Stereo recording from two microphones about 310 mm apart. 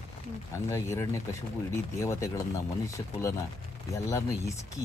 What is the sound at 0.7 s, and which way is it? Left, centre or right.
Speech, centre.